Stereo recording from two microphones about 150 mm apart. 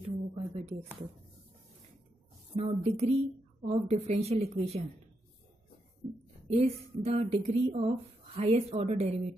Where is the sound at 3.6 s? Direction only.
45° right (ahead or behind).